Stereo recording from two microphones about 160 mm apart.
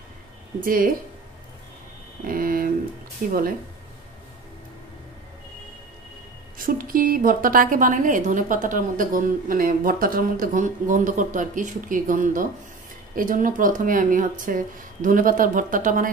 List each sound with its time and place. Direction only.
0.6 s a woman's voice: 60° right (ahead or behind)
2.2 s a sound: 65° right (ahead or behind)
6.6 s a woman's voice: 60° right (ahead or behind)